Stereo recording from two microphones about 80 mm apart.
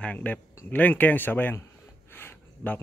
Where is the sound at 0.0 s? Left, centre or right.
Centre.